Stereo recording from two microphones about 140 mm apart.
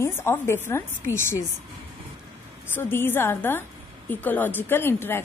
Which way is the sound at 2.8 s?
15° left (ahead or behind).